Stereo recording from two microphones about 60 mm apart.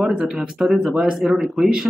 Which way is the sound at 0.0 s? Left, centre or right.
Centre.